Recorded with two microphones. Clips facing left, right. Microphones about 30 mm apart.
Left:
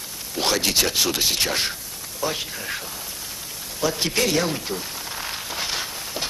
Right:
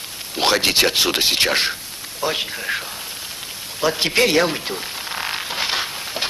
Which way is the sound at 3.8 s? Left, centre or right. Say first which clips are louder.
Right 5 dB; right.